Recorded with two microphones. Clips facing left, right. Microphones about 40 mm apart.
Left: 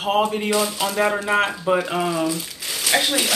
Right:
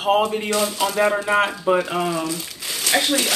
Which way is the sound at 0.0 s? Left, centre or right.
Centre.